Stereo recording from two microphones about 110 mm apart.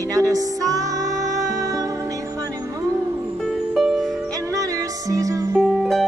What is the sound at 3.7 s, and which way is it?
Music, centre (ahead or behind).